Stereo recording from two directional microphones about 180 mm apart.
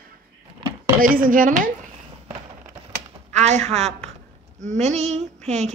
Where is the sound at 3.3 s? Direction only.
40° right (ahead or behind).